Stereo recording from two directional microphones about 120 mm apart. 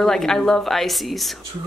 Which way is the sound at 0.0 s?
5° left (ahead or behind).